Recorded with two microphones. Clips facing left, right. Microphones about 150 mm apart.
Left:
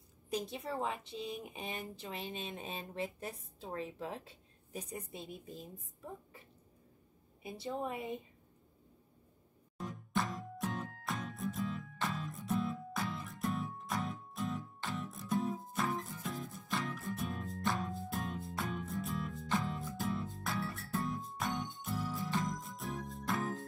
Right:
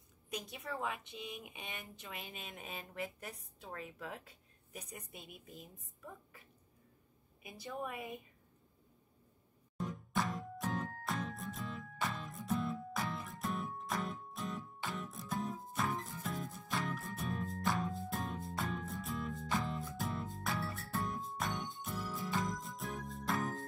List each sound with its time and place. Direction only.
0.3 s speech: 30° left (ahead or behind)
7.4 s speech: 30° left (ahead or behind)
9.8 s music: centre (ahead or behind)